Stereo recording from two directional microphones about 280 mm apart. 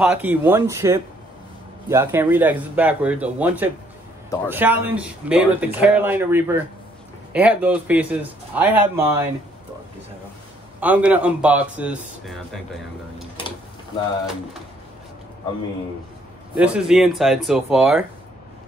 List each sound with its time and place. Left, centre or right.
0.0 s a man's voice: centre
10.8 s a man's voice: centre
16.5 s a man's voice: centre